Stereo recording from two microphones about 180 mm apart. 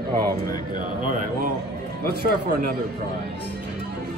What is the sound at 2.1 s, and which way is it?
Speech, 60° right (ahead or behind).